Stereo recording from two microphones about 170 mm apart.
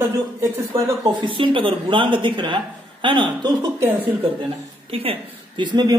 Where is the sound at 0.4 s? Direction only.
20° right (ahead or behind).